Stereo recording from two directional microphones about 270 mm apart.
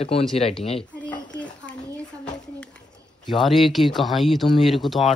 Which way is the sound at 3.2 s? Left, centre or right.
Centre.